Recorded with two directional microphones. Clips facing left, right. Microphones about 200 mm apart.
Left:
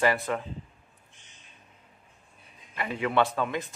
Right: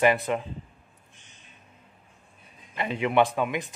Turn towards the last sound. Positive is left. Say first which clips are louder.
# right 3 dB
turn(degrees=-15)  # may be behind; listen again after turning